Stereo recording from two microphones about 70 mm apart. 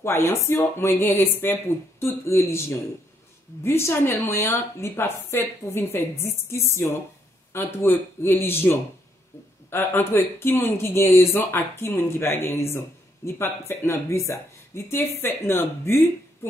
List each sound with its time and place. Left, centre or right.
0.0 s speech: left
14.9 s speech: left